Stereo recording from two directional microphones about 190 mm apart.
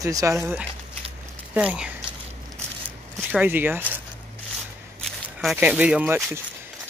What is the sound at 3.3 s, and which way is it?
Speech, 10° right (ahead or behind).